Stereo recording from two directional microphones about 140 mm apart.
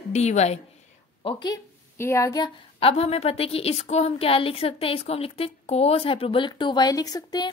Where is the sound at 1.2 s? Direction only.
40° left (ahead or behind).